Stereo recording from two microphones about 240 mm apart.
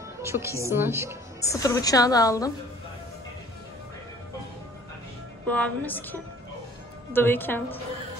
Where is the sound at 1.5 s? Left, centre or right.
Centre.